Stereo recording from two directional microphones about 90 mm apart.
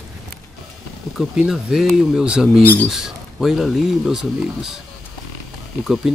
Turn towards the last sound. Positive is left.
turn(degrees=0)  # may be behind; listen again after turning